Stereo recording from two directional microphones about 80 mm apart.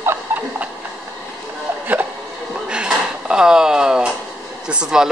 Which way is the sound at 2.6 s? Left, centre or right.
Centre.